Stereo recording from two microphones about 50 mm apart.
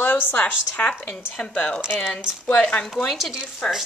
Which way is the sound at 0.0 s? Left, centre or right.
Left.